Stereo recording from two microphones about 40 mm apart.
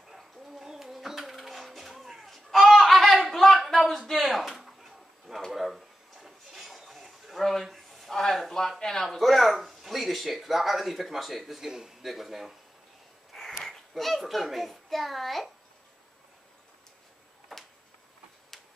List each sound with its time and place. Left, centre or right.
0.1 s a sound: centre
9.2 s speech: centre
11.6 s a man's voice: centre
12.0 s speech: centre
13.3 s a child's voice: centre